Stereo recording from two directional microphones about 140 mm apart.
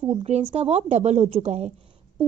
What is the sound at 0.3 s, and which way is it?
A woman's voice, 50° right (ahead or behind).